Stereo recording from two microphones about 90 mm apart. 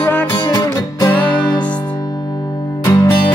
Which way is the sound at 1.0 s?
50° left (ahead or behind).